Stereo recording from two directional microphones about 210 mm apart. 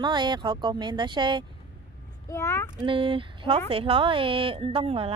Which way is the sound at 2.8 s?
25° right (ahead or behind).